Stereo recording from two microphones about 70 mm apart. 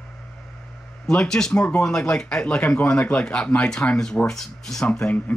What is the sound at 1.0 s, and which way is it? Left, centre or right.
Speech, centre.